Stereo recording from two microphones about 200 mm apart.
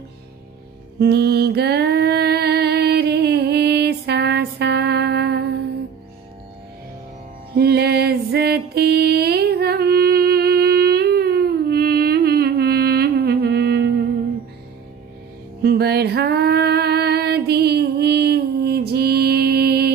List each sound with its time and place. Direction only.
0.9 s music: 55° right (ahead or behind)
7.5 s mantra: 55° right (ahead or behind)
15.6 s female singing: 55° right (ahead or behind)